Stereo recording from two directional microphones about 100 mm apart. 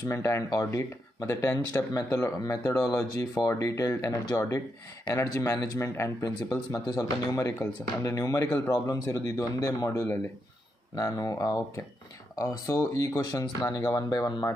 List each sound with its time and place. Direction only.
0.1 s speech: 30° left (ahead or behind)